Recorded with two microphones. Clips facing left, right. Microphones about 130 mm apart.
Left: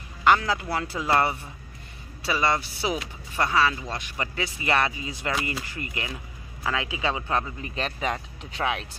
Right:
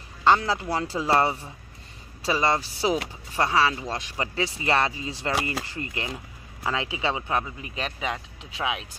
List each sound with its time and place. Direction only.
0.2 s speech: 30° right (ahead or behind); by 8.8 s 5° right (ahead or behind)